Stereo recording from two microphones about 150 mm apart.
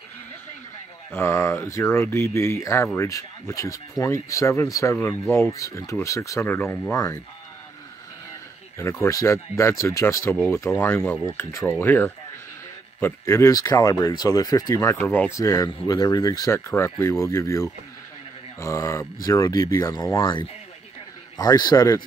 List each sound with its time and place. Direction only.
1.1 s speech: 15° left (ahead or behind)
8.7 s speech: 20° left (ahead or behind)